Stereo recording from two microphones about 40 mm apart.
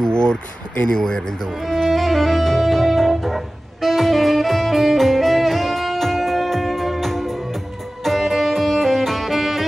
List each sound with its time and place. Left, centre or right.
0.0 s a sound: centre
0.8 s speech: centre
1.5 s music: centre